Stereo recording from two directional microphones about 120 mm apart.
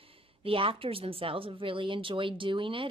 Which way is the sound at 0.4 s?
50° right (ahead or behind).